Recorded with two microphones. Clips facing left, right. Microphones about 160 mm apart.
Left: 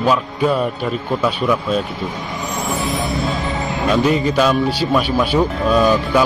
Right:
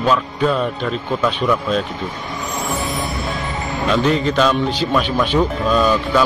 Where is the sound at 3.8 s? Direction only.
10° left (ahead or behind).